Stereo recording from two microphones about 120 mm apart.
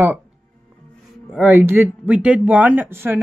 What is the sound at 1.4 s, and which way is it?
Speech, 15° right (ahead or behind).